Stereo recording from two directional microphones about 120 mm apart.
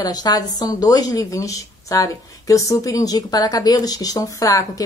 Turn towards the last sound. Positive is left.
turn(degrees=30)  # may be behind; listen again after turning